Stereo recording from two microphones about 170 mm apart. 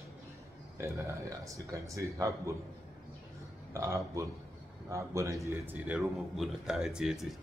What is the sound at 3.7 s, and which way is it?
Speech, 20° right (ahead or behind).